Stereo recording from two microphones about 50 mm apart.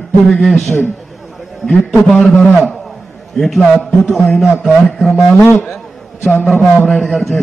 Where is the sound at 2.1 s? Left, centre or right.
Centre.